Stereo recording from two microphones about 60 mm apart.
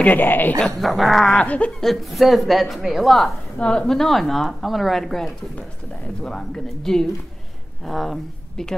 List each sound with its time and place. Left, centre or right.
0.0 s speech: left
0.7 s speech: centre
1.4 s speech: left
1.8 s speech: centre
3.5 s a woman's voice: centre